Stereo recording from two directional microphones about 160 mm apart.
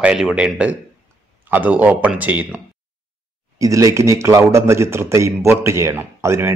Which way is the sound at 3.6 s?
20° right (ahead or behind).